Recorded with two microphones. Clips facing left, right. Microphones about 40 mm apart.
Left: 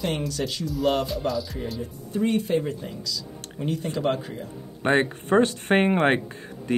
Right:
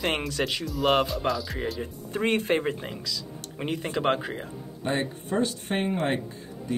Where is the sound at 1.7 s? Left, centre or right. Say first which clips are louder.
Left 2 dB; right.